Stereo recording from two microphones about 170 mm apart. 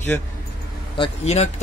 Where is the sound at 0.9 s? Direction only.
35° left (ahead or behind).